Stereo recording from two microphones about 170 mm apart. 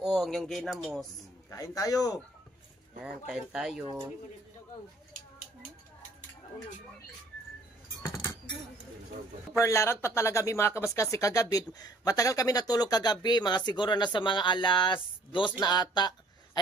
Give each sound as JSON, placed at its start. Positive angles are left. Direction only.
{"t": 0.0, "sound": "speech", "side_deg": 0}
{"t": 1.5, "sound": "speech", "side_deg": 20}
{"t": 3.0, "sound": "speech", "side_deg": -5}
{"t": 9.6, "sound": "speech", "side_deg": 15}